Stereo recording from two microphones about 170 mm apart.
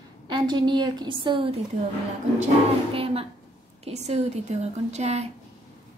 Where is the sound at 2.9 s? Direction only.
35° right (ahead or behind).